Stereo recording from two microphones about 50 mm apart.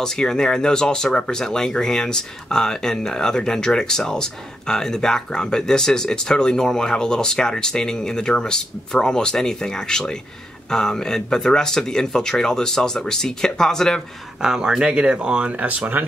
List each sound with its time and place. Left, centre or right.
0.0 s speech: centre
14.4 s speech: centre; by 16.1 s right